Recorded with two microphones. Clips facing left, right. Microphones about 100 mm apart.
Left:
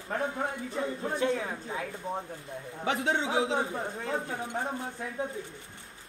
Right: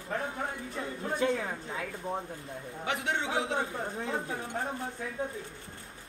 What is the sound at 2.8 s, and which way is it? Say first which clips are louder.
Speech: left 4 dB; 30° left (ahead or behind).